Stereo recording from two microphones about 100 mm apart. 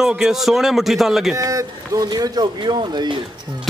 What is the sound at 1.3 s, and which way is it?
Speech, 35° right (ahead or behind).